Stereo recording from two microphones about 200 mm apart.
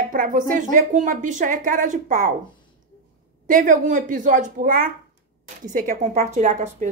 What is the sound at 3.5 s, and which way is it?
A woman's voice, 40° right (ahead or behind).